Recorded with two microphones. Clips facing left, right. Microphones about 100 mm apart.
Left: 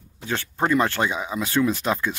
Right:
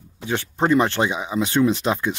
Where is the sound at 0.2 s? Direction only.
15° right (ahead or behind).